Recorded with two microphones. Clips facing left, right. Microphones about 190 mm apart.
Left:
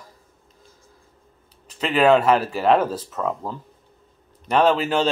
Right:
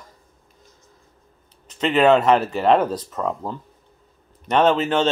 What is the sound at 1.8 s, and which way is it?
A man's voice, 5° left (ahead or behind).